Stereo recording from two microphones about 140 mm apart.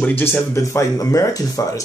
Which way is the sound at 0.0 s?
15° left (ahead or behind).